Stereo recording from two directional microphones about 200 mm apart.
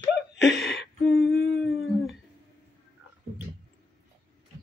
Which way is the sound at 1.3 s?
55° left (ahead or behind).